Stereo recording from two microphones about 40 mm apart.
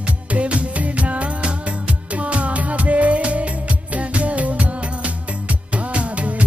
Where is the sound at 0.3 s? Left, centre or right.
Right.